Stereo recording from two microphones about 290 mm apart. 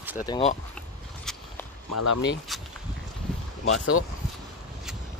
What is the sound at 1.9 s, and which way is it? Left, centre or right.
Speech, left.